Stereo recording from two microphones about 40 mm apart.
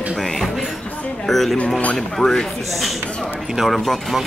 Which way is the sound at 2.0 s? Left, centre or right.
Centre.